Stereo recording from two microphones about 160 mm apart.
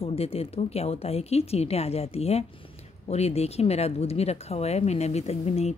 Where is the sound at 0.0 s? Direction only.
40° left (ahead or behind).